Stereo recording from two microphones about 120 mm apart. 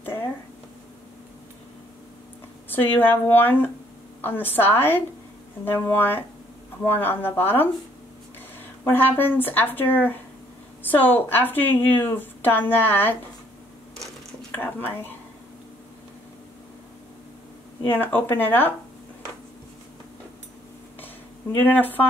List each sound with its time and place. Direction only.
2.7 s a woman's voice: 15° left (ahead or behind)
8.8 s a woman's voice: 15° left (ahead or behind)
14.5 s speech: 15° left (ahead or behind)
17.8 s a woman's voice: 15° left (ahead or behind)
21.6 s a woman's voice: 15° left (ahead or behind)